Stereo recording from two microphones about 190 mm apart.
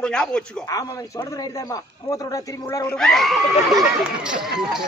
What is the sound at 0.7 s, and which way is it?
A man's voice, 20° left (ahead or behind).